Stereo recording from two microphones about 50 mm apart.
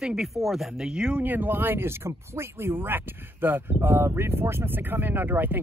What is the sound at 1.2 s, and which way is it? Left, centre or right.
Speech, right.